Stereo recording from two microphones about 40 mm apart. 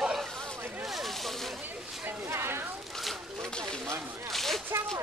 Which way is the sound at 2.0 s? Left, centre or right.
Right.